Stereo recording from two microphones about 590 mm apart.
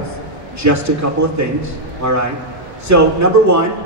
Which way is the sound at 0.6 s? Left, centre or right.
Right.